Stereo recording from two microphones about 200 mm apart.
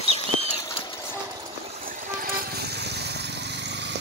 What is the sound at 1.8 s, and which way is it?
Vehicle, 45° right (ahead or behind).